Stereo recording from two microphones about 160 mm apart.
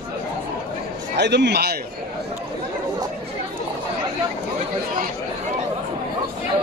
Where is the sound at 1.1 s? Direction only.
90° right.